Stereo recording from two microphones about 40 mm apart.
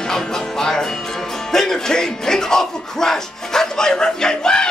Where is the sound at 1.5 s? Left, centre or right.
Centre.